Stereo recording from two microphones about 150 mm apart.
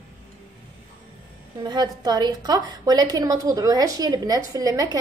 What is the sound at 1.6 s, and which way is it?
A woman's voice, 25° right (ahead or behind).